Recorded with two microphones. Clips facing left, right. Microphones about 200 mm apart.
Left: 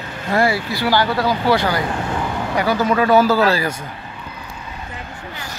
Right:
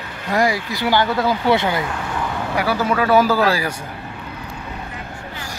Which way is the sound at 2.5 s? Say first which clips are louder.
Left 2 dB; 10° right (ahead or behind).